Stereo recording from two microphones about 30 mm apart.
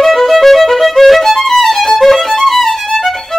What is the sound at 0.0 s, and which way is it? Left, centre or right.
Violin, centre.